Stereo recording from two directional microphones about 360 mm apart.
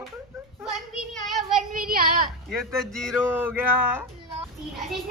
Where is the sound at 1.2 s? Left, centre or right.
Centre.